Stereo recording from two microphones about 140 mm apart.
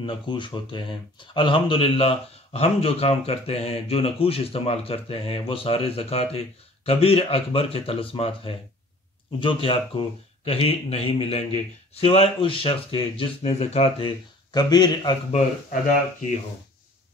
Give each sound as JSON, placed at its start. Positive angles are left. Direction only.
{"t": 0.0, "sound": "speech", "side_deg": 35}
{"t": 14.5, "sound": "speech", "side_deg": 30}